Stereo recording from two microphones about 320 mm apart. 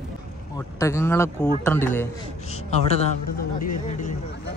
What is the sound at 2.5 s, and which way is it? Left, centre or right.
Speech, centre.